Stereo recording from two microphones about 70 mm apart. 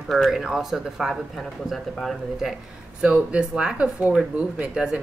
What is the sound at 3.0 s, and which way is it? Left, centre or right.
Speech, centre.